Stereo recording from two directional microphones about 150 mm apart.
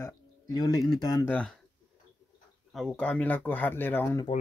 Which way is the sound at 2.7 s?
5° left (ahead or behind).